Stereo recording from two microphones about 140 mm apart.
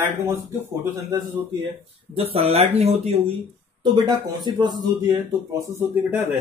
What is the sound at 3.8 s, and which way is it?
Speech, 30° right (ahead or behind).